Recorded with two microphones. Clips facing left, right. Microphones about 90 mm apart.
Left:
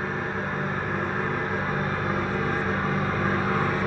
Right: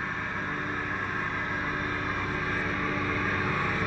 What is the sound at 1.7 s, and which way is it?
Vehicle, 40° left (ahead or behind).